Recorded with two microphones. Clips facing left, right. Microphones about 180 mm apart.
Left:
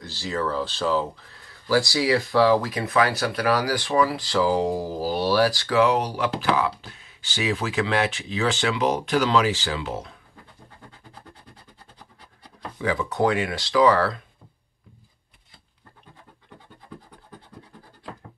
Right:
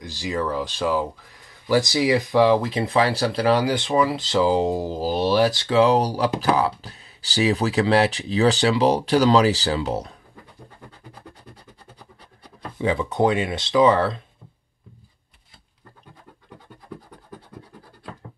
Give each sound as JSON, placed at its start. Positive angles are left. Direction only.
{"t": 0.0, "sound": "speech", "side_deg": -15}
{"t": 12.8, "sound": "speech", "side_deg": -25}